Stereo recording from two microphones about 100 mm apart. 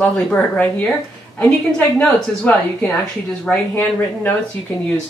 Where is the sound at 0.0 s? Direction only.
5° left (ahead or behind).